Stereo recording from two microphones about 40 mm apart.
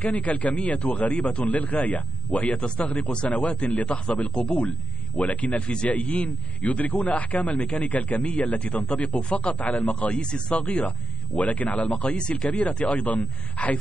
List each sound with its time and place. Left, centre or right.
0.0 s speech: left
5.7 s speech: left
9.9 s speech: left
12.2 s speech: left
12.4 s speech: left